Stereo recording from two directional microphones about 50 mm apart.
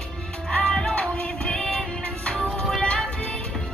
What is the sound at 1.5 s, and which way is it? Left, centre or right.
Music, centre.